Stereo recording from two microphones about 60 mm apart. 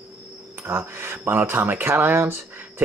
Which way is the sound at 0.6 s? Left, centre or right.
Right.